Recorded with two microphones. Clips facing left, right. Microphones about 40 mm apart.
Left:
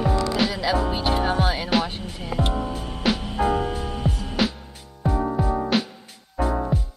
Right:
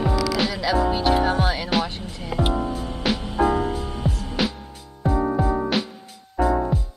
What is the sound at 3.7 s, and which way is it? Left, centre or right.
Music, left.